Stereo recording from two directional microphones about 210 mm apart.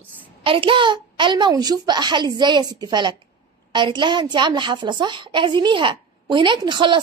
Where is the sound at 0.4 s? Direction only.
25° right (ahead or behind).